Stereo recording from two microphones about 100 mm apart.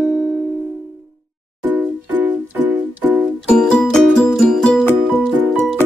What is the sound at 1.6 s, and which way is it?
Music, 15° right (ahead or behind).